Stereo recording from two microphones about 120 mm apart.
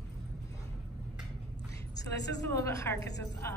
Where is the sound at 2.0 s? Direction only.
25° left (ahead or behind).